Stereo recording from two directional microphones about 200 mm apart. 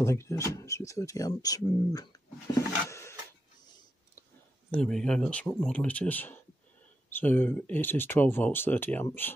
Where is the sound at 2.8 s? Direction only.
15° left (ahead or behind).